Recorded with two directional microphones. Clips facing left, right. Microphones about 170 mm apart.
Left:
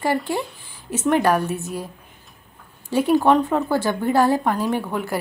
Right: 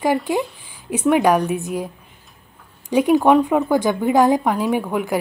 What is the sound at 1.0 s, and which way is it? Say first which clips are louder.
Speech: right 3 dB; 15° right (ahead or behind).